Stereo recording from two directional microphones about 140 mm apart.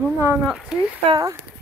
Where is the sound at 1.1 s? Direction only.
25° right (ahead or behind).